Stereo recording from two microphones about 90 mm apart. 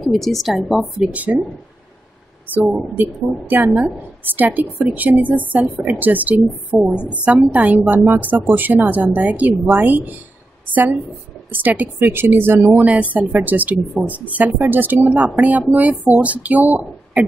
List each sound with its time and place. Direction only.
0.0 s a woman's voice: 5° left (ahead or behind)
1.1 s speech: 20° right (ahead or behind)
2.5 s speech: 15° right (ahead or behind)